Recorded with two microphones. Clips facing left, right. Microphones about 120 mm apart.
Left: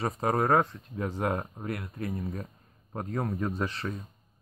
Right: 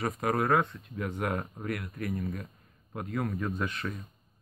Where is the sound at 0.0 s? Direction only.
30° left (ahead or behind).